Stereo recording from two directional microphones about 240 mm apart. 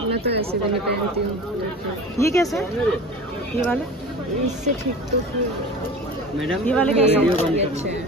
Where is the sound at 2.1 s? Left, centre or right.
Centre.